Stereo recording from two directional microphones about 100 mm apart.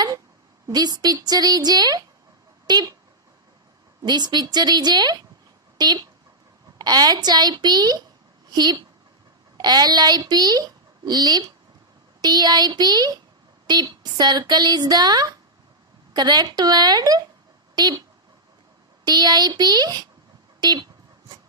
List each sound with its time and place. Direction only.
0.7 s a woman's voice: 40° right (ahead or behind)
4.0 s a woman's voice: 45° right (ahead or behind)
19.0 s a woman's voice: 45° right (ahead or behind)
20.6 s a sound: 45° right (ahead or behind)